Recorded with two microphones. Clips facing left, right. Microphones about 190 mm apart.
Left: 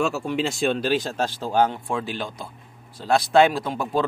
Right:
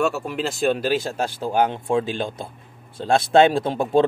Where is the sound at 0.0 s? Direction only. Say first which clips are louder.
Right 1 dB; centre (ahead or behind).